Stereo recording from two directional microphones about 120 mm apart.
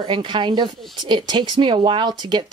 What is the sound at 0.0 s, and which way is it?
Speech, 45° right (ahead or behind).